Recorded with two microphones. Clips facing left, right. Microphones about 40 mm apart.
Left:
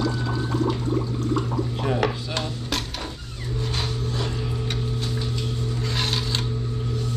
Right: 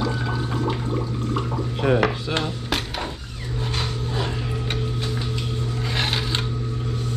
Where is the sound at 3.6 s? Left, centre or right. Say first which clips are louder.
Right 1 dB; centre.